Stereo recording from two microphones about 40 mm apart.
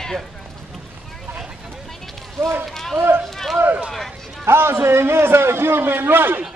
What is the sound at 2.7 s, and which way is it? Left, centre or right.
Speech, centre.